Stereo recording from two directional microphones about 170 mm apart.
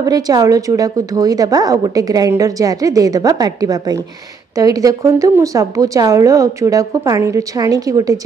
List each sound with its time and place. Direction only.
0.0 s a woman's voice: 20° right (ahead or behind)